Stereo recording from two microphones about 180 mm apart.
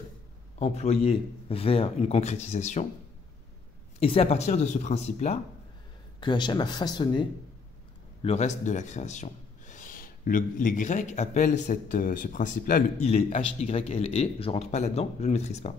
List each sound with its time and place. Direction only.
0.6 s a man's voice: 35° left (ahead or behind)
4.0 s a man's voice: 35° left (ahead or behind)
6.2 s speech: 25° left (ahead or behind)
8.2 s speech: 35° left (ahead or behind)
13.0 s a man's voice: 40° left (ahead or behind)